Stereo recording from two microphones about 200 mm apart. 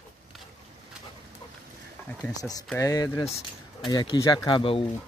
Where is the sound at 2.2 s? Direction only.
5° left (ahead or behind); by 4.8 s 25° left (ahead or behind).